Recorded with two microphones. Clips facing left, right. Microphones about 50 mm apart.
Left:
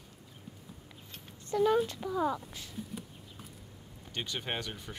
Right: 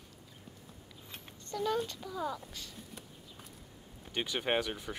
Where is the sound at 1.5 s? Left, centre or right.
Centre.